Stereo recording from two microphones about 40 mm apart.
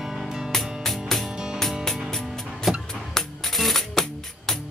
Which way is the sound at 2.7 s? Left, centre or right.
Centre.